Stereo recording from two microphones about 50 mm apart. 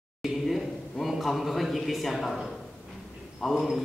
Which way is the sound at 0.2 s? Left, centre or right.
Centre.